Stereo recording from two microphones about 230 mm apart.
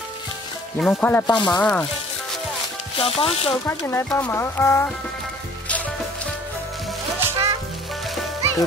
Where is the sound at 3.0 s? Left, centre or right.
Left.